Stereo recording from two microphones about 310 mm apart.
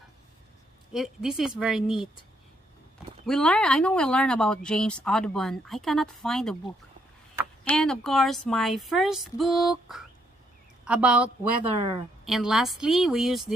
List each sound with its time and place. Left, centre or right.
0.9 s a woman's voice: centre
3.3 s a woman's voice: centre
7.6 s a woman's voice: centre
11.6 s speech: centre
12.3 s a woman's voice: centre